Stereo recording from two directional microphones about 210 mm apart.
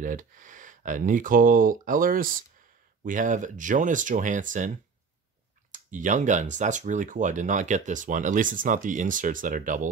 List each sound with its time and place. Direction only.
0.0 s speech: 40° right (ahead or behind)